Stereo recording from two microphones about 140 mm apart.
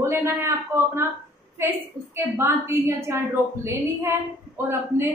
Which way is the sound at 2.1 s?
20° right (ahead or behind).